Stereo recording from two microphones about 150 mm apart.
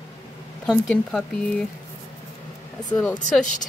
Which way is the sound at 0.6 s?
5° left (ahead or behind).